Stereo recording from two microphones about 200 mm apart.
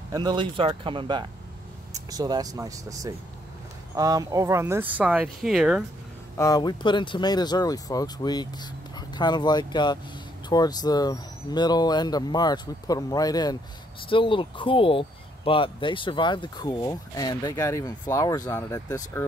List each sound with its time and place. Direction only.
0.1 s speech: 20° right (ahead or behind); by 5.9 s 5° right (ahead or behind)
6.3 s speech: 15° left (ahead or behind)